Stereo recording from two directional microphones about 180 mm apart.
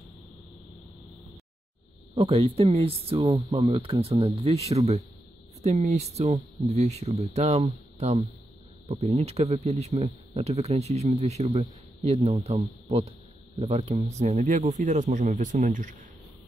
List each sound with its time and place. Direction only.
2.1 s speech: 30° right (ahead or behind)